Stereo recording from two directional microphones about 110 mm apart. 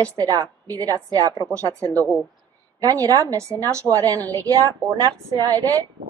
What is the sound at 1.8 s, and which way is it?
Speech, 15° left (ahead or behind).